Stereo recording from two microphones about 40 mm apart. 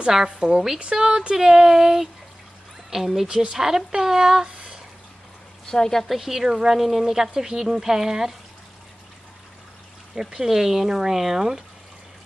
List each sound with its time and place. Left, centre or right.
0.1 s a woman's voice: centre
3.3 s speech: centre
5.7 s a woman's voice: centre
6.0 s speech: centre
10.1 s speech: centre